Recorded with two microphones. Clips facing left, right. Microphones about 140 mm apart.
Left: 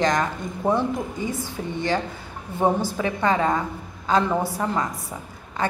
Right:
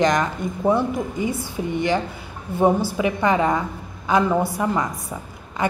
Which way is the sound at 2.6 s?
10° right (ahead or behind).